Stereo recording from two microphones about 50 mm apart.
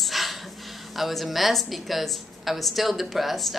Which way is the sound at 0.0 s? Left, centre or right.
Centre.